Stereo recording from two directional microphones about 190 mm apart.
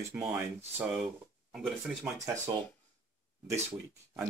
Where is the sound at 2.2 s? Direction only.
15° right (ahead or behind).